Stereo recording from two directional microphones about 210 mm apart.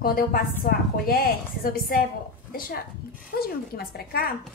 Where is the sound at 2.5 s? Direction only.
45° left (ahead or behind).